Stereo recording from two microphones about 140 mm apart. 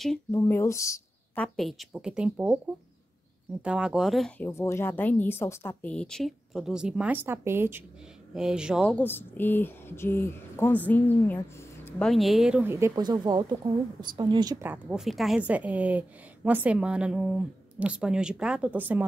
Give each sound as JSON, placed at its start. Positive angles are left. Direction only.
{"t": 0.3, "sound": "speech", "side_deg": 15}
{"t": 1.3, "sound": "speech", "side_deg": 5}
{"t": 4.4, "sound": "speech", "side_deg": 20}
{"t": 8.4, "sound": "speech", "side_deg": -5}
{"t": 8.9, "sound": "speech", "side_deg": 15}
{"t": 12.1, "sound": "speech", "side_deg": 0}
{"t": 12.9, "sound": "speech", "side_deg": -30}
{"t": 14.6, "sound": "a woman's voice", "side_deg": -10}